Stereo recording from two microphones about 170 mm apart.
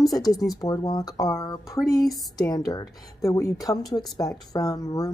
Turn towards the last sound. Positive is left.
turn(degrees=20)  # may be behind; listen again after turning